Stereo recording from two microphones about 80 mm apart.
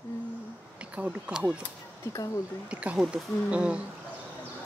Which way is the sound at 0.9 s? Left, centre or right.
Centre.